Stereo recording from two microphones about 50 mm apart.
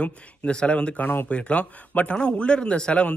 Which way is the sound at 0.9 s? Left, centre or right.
Left.